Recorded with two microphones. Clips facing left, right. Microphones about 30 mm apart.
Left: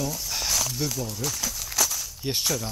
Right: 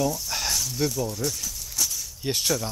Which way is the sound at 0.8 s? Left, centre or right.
Centre.